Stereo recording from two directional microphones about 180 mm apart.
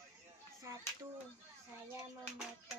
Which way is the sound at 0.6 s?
15° right (ahead or behind).